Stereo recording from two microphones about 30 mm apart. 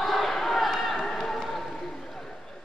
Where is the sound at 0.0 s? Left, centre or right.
Centre.